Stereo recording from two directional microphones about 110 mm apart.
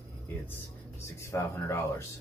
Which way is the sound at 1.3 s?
30° left (ahead or behind).